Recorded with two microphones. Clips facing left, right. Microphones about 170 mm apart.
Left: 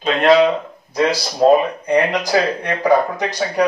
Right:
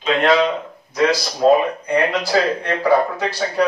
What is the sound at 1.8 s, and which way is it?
Speech, 15° left (ahead or behind).